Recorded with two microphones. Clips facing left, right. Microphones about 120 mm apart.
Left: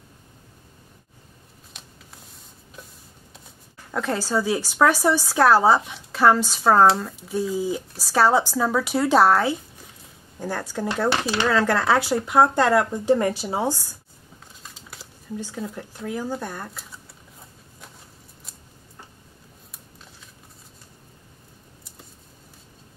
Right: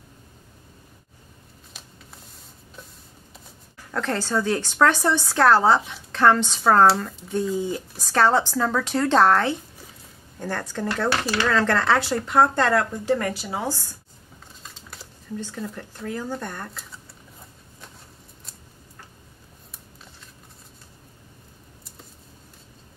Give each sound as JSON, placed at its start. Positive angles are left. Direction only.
{"t": 3.3, "sound": "speech", "side_deg": 5}
{"t": 13.7, "sound": "speech", "side_deg": 15}
{"t": 14.6, "sound": "a sound", "side_deg": 0}